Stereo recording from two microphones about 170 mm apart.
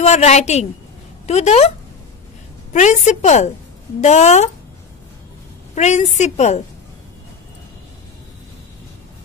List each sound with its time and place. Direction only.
0.0 s a woman's voice: 40° left (ahead or behind)
2.7 s a woman's voice: 45° left (ahead or behind)
5.8 s a woman's voice: 40° left (ahead or behind)